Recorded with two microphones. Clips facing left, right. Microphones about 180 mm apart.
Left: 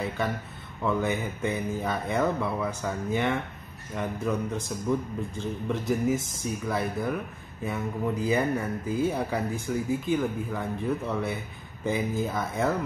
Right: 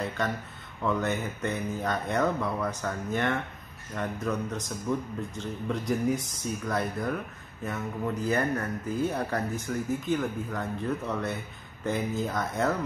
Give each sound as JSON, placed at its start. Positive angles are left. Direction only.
{"t": 0.8, "sound": "speech", "side_deg": 10}
{"t": 5.7, "sound": "speech", "side_deg": 5}